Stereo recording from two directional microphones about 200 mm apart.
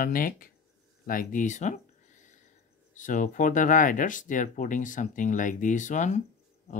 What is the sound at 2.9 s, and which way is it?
Speech, 40° left (ahead or behind).